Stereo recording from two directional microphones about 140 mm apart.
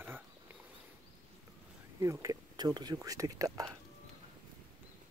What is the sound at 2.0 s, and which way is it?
Speech, 20° right (ahead or behind).